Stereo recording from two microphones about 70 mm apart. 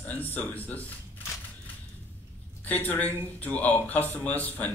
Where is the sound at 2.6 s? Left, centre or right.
Left.